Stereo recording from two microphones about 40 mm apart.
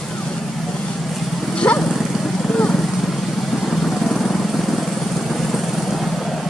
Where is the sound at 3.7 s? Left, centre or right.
Centre.